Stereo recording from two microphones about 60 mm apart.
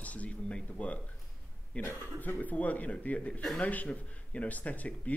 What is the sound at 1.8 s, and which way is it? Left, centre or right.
Speech, left.